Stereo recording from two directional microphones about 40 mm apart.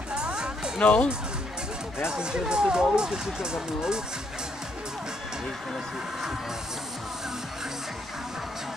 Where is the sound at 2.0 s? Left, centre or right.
Right.